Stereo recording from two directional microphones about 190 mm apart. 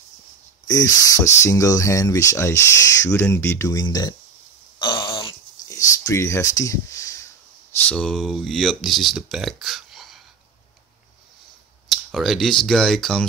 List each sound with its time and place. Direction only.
0.7 s speech: 20° left (ahead or behind)
4.7 s throat clearing: 25° left (ahead or behind)
5.7 s speech: 15° left (ahead or behind)
7.9 s speech: 5° left (ahead or behind)
12.1 s speech: centre (ahead or behind)